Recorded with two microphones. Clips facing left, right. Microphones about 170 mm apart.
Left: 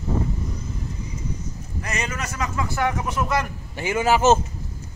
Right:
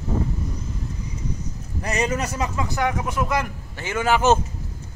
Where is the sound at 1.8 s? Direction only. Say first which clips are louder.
Right 6 dB; 35° right (ahead or behind).